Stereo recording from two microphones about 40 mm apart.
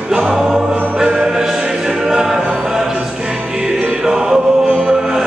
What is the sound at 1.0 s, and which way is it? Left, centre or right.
Choir, centre.